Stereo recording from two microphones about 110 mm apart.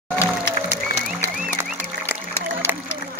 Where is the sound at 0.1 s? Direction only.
25° left (ahead or behind).